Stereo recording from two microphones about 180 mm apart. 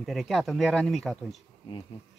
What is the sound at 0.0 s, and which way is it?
Speech, centre (ahead or behind).